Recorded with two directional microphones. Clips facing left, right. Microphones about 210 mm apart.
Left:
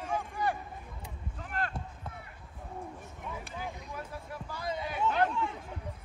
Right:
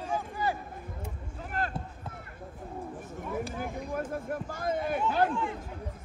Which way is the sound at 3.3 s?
50° right (ahead or behind).